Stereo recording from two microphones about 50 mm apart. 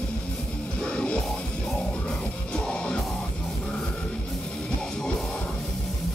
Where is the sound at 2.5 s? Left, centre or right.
Centre.